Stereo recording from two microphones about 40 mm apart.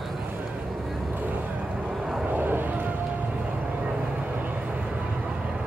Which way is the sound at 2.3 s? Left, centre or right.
Right.